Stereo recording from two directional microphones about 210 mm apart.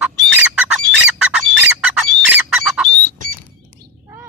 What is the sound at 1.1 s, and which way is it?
Bird, centre (ahead or behind).